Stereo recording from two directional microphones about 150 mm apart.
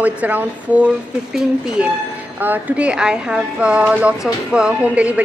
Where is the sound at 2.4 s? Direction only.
10° right (ahead or behind).